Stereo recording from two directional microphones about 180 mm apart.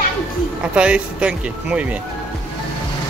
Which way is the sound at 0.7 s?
5° right (ahead or behind).